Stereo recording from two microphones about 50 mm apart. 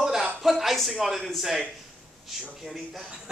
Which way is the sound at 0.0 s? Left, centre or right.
Centre.